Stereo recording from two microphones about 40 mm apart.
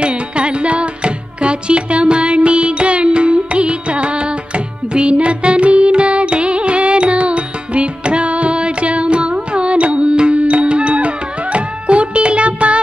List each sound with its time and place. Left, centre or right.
0.0 s music: right